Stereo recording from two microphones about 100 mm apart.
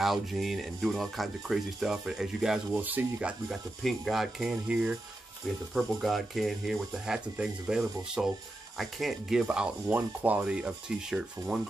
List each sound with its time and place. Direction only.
0.0 s speech: centre (ahead or behind)
2.7 s rub: 20° right (ahead or behind)
3.8 s speech: centre (ahead or behind)
5.8 s speech: centre (ahead or behind)
9.9 s rub: 15° right (ahead or behind)